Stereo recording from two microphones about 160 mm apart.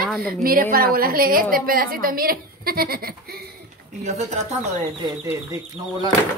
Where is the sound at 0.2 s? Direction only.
70° right (ahead or behind).